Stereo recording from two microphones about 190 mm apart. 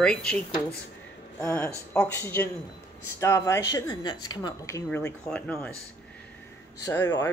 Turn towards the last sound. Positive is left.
turn(degrees=10)  # may be behind; listen again after turning